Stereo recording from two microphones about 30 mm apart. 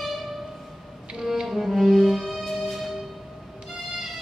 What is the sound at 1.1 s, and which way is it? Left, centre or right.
Music, centre.